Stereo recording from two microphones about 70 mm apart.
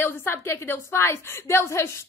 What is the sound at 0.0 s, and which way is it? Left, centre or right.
A woman's voice, left.